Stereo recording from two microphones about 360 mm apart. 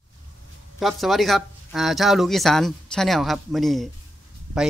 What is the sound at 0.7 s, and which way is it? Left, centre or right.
Speech, centre.